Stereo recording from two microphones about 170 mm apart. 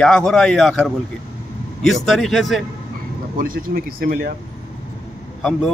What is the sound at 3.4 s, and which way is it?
Speech, 60° right (ahead or behind).